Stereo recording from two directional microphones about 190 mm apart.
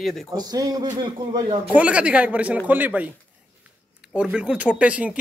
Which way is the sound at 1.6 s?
5° right (ahead or behind).